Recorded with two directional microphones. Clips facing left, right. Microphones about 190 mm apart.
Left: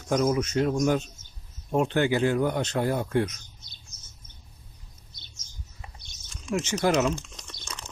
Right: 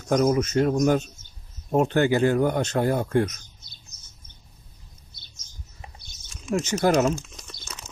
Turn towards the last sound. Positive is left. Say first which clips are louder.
# even
turn(degrees=-5)  # may be behind; listen again after turning